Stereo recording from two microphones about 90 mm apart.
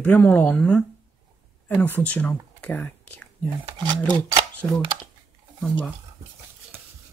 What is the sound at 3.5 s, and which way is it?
Speech, 60° right (ahead or behind).